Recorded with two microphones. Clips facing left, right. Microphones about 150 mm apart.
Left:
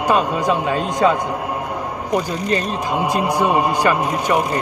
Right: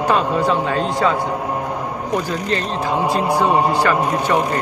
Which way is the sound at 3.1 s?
15° left (ahead or behind).